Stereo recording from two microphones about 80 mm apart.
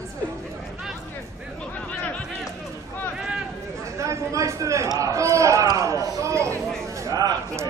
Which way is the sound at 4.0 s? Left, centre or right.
Right.